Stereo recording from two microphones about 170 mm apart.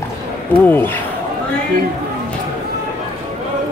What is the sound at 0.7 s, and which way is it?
Speech, 10° left (ahead or behind).